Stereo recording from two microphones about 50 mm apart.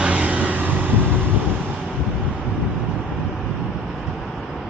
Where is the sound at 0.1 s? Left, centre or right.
Right.